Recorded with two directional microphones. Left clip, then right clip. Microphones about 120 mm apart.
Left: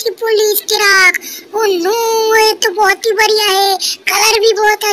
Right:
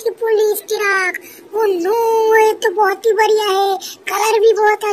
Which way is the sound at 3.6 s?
35° left (ahead or behind).